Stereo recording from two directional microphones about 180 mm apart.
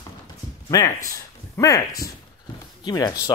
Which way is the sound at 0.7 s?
20° left (ahead or behind).